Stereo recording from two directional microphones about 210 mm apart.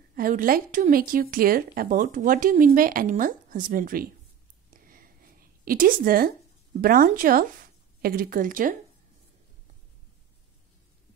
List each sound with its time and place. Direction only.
0.1 s speech: 40° right (ahead or behind)
4.7 s a sound: 40° right (ahead or behind)
6.8 s speech: 45° right (ahead or behind)